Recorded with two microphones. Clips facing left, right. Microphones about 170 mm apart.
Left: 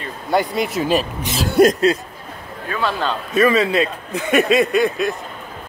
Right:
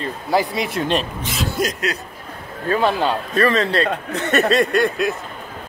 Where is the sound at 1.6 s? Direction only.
65° left (ahead or behind).